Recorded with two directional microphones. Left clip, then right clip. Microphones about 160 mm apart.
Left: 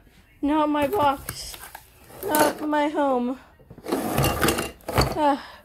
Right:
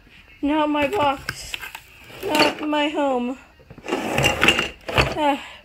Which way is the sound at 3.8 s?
60° left (ahead or behind).